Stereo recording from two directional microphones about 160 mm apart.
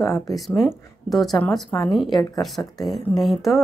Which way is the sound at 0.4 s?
Centre (ahead or behind).